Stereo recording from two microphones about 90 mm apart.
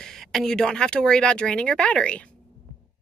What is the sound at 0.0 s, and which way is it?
Speech, 5° left (ahead or behind).